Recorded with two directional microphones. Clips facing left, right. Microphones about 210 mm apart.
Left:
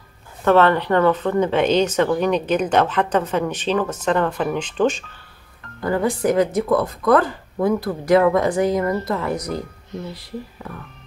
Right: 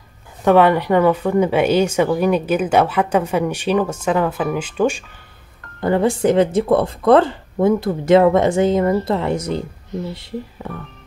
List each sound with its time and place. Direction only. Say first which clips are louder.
0.4 s speech: right 2 dB; 15° right (ahead or behind)
5.8 s speech: right 4 dB; 25° right (ahead or behind)